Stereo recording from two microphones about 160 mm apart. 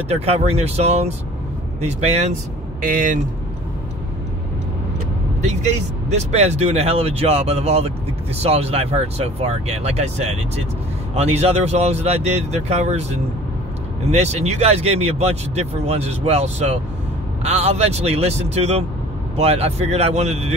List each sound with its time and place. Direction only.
0.1 s speech: 40° right (ahead or behind)
2.9 s speech: 55° right (ahead or behind)
6.0 s speech: 45° right (ahead or behind)